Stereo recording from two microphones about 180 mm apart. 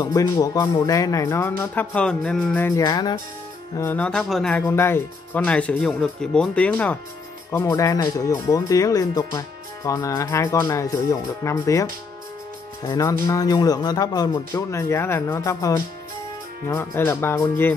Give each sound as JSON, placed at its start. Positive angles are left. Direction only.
{"t": 0.0, "sound": "speech", "side_deg": 20}